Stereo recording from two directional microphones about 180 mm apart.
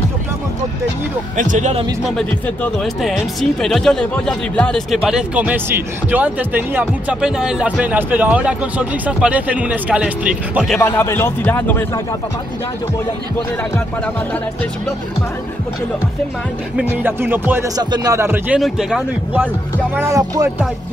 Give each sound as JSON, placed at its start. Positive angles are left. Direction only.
{"t": 1.3, "sound": "speech", "side_deg": -45}
{"t": 2.1, "sound": "speech", "side_deg": 5}
{"t": 10.8, "sound": "a man's voice", "side_deg": 15}
{"t": 17.0, "sound": "a man's voice", "side_deg": -10}
{"t": 20.0, "sound": "a man's voice", "side_deg": -15}